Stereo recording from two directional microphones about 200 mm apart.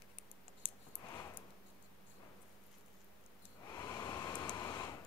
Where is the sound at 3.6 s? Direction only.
20° left (ahead or behind).